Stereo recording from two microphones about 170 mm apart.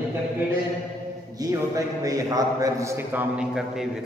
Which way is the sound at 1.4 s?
20° right (ahead or behind).